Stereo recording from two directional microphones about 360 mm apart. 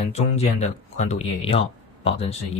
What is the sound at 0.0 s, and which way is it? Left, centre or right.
Speech, centre.